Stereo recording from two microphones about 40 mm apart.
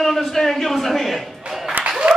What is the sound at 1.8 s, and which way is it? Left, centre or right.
Applause, centre.